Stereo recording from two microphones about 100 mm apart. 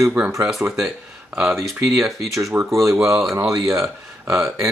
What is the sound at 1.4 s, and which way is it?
Speech, centre (ahead or behind).